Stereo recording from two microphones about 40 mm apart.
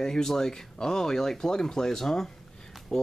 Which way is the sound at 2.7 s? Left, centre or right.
Centre.